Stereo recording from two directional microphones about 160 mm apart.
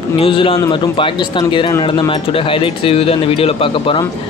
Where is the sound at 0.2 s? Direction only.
35° left (ahead or behind).